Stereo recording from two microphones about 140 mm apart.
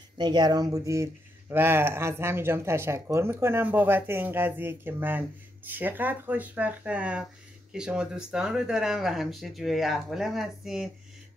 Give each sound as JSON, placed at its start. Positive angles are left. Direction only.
{"t": 0.2, "sound": "speech", "side_deg": -30}